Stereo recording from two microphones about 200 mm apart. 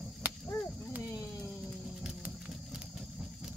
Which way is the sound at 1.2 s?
10° left (ahead or behind).